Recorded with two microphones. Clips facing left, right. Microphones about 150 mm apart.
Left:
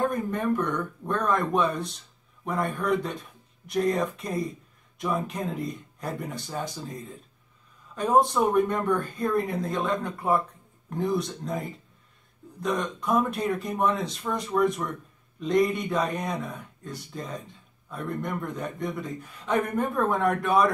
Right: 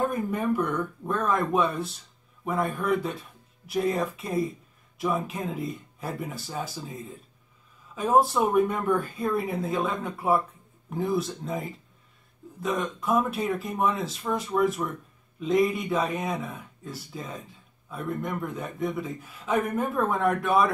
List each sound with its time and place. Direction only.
0.0 s speech: 5° right (ahead or behind)